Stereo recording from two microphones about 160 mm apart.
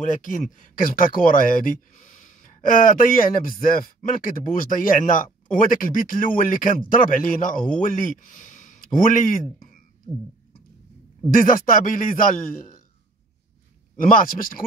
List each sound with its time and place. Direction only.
0.0 s speech: 55° left (ahead or behind)
11.2 s speech: 60° left (ahead or behind)
14.0 s speech: 60° left (ahead or behind)